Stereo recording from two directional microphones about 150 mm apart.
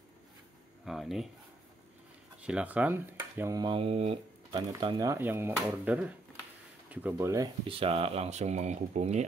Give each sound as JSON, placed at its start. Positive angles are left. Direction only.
{"t": 0.8, "sound": "speech", "side_deg": 0}
{"t": 2.4, "sound": "speech", "side_deg": -10}
{"t": 3.5, "sound": "speech", "side_deg": -30}
{"t": 4.6, "sound": "speech", "side_deg": -25}
{"t": 7.6, "sound": "speech", "side_deg": -35}